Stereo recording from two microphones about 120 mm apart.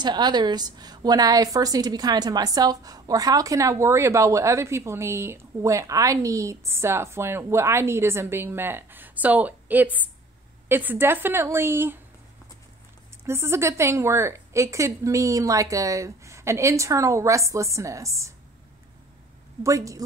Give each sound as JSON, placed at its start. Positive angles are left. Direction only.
{"t": 0.0, "sound": "a woman's voice", "side_deg": -35}
{"t": 13.2, "sound": "a woman's voice", "side_deg": -20}
{"t": 19.6, "sound": "a woman's voice", "side_deg": -25}